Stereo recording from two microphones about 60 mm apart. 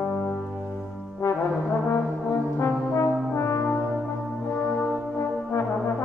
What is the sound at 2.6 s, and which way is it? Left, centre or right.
Brass instrument, left.